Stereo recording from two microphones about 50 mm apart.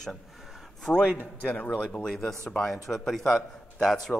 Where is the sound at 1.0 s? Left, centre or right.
Right.